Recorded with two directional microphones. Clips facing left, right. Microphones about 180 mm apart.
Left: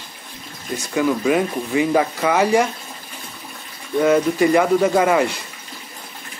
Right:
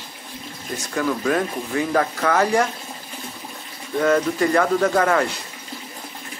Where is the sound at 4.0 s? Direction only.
10° left (ahead or behind).